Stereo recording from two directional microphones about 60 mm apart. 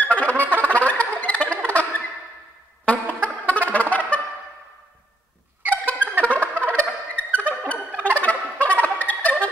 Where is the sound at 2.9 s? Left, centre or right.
Left.